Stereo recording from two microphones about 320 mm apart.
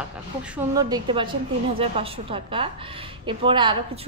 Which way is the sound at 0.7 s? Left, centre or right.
Centre.